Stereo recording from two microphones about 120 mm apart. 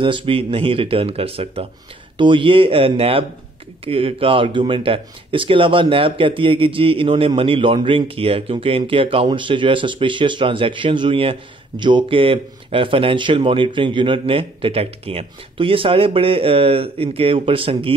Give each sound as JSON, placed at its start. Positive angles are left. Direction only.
{"t": 0.0, "sound": "speech", "side_deg": -45}